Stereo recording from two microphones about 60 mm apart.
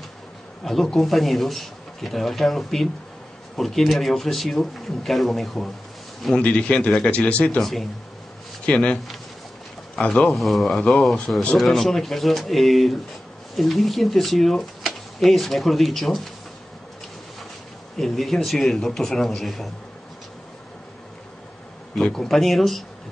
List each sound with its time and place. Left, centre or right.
0.7 s speech: centre
6.3 s a man's voice: centre
7.6 s speech: centre
8.6 s a man's voice: centre
10.2 s speech: centre
17.9 s speech: centre
22.1 s speech: centre